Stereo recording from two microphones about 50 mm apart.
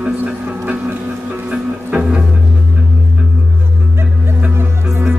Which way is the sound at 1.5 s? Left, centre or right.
Right.